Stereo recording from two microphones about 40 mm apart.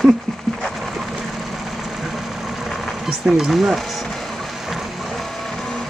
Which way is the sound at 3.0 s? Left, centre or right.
Centre.